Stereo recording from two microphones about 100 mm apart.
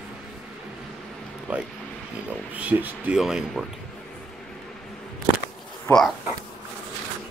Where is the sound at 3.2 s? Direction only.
5° right (ahead or behind).